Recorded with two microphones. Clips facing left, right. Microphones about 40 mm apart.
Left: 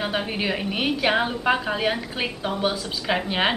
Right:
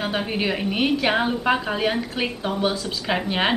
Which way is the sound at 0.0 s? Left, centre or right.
Centre.